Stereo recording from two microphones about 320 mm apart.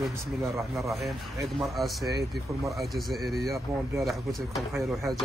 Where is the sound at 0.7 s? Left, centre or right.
Centre.